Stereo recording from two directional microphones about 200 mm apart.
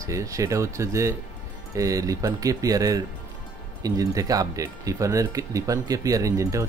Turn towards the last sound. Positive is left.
turn(degrees=-15)  # may be behind; listen again after turning